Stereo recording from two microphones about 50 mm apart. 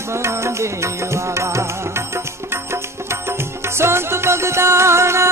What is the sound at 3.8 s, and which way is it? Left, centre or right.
Music, right.